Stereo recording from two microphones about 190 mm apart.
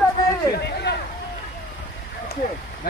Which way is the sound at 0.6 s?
60° left (ahead or behind).